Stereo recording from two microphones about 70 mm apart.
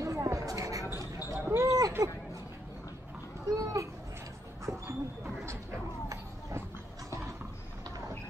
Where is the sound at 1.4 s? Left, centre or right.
Right.